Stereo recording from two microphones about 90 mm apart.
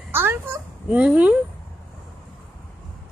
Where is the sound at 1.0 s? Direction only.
15° right (ahead or behind).